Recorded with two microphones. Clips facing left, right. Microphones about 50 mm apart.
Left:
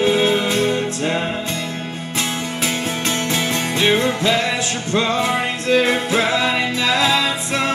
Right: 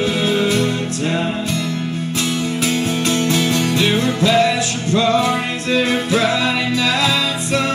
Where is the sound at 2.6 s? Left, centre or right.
Left.